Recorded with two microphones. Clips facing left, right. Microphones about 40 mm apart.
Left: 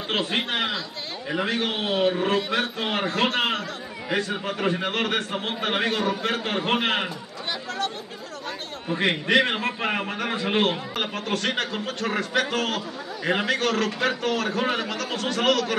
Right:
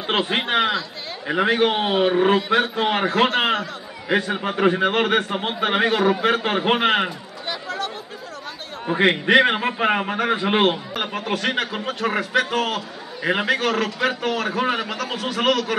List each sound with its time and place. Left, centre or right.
0.1 s a man's voice: centre
7.4 s a sound: centre
8.8 s a man's voice: right
10.7 s a man's voice: centre